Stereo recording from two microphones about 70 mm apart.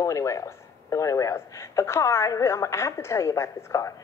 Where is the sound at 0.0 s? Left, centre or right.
Left.